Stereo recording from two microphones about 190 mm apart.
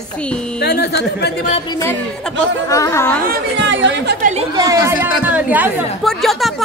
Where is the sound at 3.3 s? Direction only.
70° right (ahead or behind).